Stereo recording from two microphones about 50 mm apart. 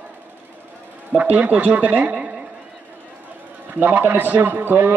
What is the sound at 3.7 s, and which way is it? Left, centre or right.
A man's voice, right.